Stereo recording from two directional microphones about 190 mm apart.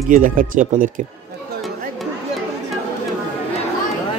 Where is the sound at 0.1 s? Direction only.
45° right (ahead or behind).